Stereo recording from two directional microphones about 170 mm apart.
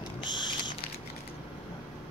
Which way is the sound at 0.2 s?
25° left (ahead or behind).